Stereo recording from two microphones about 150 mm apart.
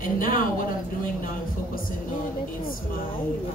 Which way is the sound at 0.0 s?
65° left (ahead or behind).